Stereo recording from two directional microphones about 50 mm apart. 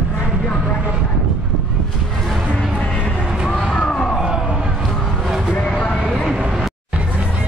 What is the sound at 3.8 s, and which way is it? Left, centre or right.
Music, centre.